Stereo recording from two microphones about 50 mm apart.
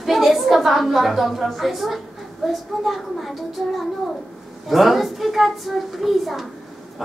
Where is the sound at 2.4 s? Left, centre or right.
Centre.